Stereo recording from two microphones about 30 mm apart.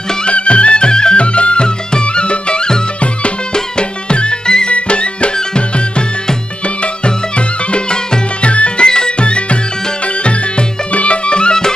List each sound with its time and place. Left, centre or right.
0.2 s music: left
1.1 s music: left
8.8 s music: left
10.9 s music: left